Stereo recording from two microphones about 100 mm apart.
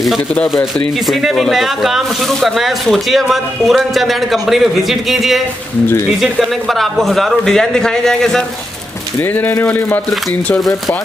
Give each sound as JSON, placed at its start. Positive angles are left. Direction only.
{"t": 1.0, "sound": "speech", "side_deg": 0}
{"t": 9.2, "sound": "speech", "side_deg": 20}